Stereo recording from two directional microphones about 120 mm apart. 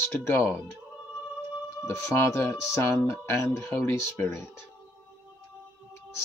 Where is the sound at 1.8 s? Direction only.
25° left (ahead or behind).